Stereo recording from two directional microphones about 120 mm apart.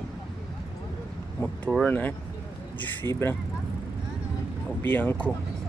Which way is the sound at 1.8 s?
15° left (ahead or behind).